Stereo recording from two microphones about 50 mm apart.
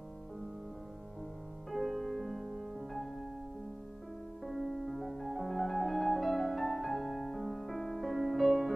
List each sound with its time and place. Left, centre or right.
1.7 s music: centre
4.5 s music: centre